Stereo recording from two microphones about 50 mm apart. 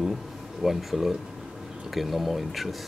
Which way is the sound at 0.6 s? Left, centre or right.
Centre.